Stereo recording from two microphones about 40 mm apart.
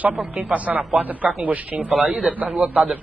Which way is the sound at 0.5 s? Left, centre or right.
Right.